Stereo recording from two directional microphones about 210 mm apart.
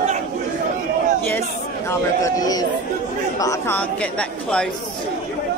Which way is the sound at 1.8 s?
15° left (ahead or behind).